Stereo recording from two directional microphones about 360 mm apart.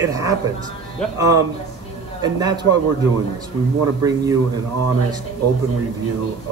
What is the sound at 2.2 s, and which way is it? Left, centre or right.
Speech, centre.